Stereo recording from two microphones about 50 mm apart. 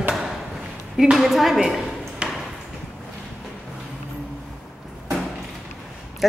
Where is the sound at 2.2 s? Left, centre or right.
Right.